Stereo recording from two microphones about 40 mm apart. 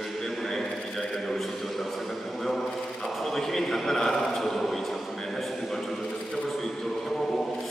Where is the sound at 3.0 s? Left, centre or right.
Centre.